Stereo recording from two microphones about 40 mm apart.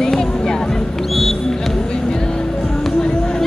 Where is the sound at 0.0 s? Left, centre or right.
Centre.